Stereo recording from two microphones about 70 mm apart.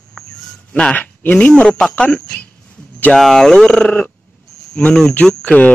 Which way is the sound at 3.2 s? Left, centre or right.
Centre.